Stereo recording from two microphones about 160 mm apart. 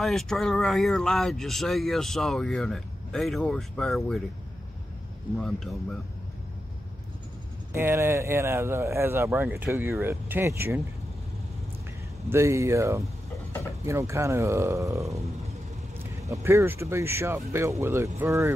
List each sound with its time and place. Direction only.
0.0 s speech: centre (ahead or behind)
5.4 s speech: 5° left (ahead or behind)
7.7 s speech: 15° right (ahead or behind)
12.3 s speech: 15° right (ahead or behind)